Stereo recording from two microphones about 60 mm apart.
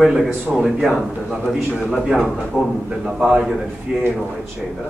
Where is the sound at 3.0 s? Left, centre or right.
Centre.